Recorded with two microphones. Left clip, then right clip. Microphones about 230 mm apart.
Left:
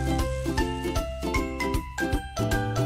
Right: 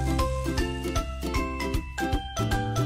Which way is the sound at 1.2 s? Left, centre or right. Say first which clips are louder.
Left 3 dB; left.